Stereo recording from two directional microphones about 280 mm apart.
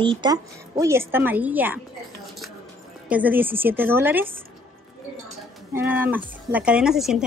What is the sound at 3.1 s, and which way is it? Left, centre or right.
Speech, centre.